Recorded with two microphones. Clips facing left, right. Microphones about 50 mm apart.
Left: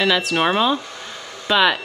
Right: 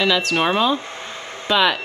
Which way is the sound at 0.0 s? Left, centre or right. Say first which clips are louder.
Even; centre.